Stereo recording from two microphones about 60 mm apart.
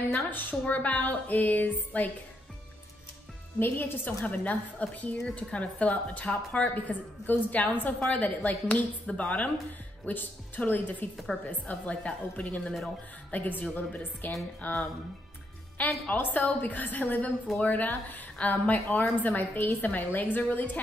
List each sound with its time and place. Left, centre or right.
0.3 s a woman's voice: left
3.5 s a woman's voice: left
16.1 s a woman's voice: left